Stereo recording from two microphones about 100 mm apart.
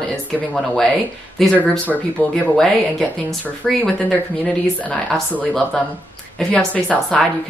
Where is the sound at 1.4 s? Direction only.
5° left (ahead or behind).